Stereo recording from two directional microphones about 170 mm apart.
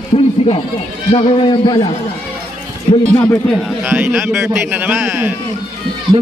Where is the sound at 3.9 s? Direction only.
10° right (ahead or behind).